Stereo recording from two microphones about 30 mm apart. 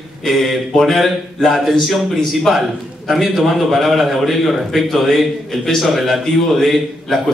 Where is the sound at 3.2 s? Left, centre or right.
Centre.